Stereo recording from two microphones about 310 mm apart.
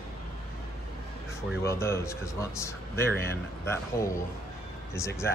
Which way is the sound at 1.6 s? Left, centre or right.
Centre.